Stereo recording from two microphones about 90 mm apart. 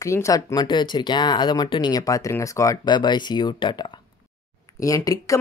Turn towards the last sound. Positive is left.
turn(degrees=40)  # may be behind; listen again after turning